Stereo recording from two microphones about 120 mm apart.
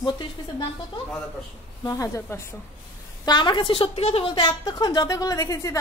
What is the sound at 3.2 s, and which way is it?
A woman's voice, 40° left (ahead or behind).